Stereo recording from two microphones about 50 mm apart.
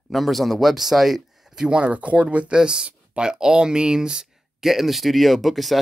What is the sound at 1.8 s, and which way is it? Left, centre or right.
Speech, right.